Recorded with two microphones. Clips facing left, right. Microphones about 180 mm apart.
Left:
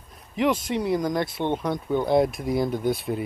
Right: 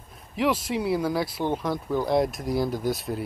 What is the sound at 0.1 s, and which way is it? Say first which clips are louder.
Speech: left 2 dB; 5° right (ahead or behind).